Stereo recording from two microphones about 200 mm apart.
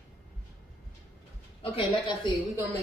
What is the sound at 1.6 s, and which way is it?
A woman's voice, 25° left (ahead or behind).